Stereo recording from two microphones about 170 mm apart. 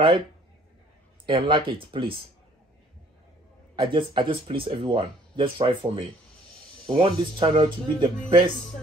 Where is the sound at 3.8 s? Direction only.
30° right (ahead or behind).